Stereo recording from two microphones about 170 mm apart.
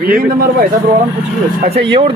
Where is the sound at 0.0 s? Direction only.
60° right (ahead or behind).